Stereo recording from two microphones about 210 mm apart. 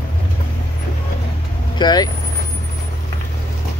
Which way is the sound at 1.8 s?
20° left (ahead or behind).